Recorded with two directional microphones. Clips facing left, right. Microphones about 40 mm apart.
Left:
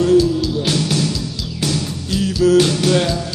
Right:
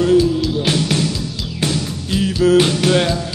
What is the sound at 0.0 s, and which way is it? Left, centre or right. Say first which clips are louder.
Music: even; right.